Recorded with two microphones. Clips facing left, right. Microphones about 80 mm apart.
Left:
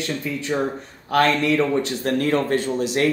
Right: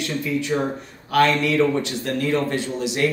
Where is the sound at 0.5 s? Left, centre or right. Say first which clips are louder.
Left 1 dB; centre.